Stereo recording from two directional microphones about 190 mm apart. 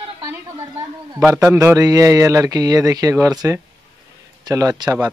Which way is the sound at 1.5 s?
15° right (ahead or behind).